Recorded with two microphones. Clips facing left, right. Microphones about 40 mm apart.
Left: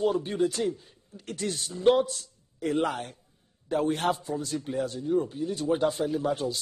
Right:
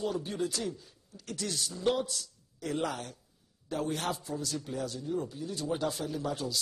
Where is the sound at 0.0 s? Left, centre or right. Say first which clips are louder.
Left 7 dB; left.